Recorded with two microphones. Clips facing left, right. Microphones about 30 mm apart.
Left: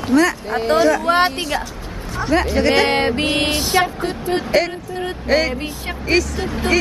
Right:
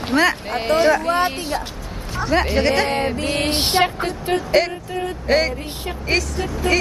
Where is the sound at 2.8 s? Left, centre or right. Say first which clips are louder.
Left 4 dB; left.